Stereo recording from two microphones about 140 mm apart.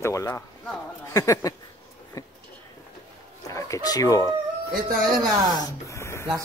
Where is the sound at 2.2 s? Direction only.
25° left (ahead or behind).